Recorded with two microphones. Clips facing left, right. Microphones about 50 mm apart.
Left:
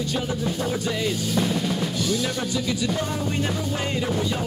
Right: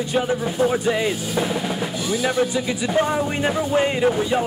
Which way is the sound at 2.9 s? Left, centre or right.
Right.